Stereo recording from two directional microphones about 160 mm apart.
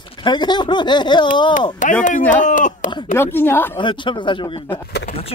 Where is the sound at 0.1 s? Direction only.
30° left (ahead or behind).